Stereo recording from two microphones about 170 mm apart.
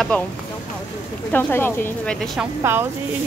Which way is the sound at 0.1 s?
10° left (ahead or behind).